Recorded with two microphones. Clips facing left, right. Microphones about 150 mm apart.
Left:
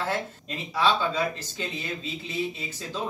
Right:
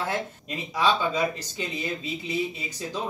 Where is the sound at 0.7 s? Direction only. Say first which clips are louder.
Even; 15° right (ahead or behind).